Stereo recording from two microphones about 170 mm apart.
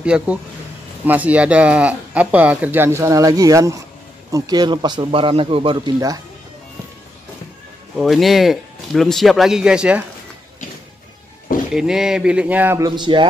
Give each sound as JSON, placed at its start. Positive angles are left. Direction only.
{"t": 0.0, "sound": "speech", "side_deg": -5}
{"t": 7.9, "sound": "speech", "side_deg": 0}
{"t": 11.7, "sound": "speech", "side_deg": -5}